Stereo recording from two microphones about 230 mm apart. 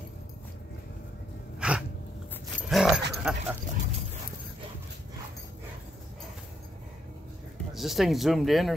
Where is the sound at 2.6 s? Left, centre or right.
Centre.